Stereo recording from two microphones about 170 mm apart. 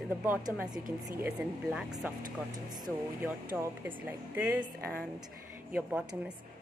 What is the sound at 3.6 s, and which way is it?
Speech, 10° right (ahead or behind).